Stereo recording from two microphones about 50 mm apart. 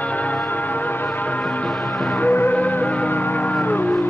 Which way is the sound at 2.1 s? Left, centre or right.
Left.